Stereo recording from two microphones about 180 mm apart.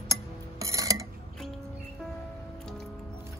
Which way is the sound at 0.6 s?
20° right (ahead or behind).